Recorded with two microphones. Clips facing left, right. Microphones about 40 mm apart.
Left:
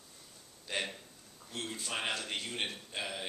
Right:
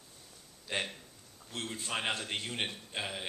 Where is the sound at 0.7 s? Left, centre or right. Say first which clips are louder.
Right 1 dB; right.